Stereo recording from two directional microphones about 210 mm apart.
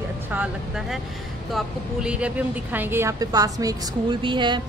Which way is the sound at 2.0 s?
5° right (ahead or behind).